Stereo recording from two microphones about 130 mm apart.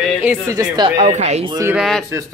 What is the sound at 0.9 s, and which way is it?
Speech, 60° right (ahead or behind).